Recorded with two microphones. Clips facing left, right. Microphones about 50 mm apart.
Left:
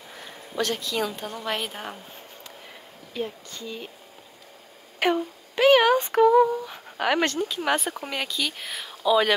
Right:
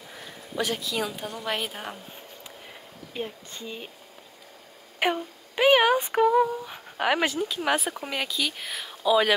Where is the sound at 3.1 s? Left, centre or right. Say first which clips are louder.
Left 3 dB; right.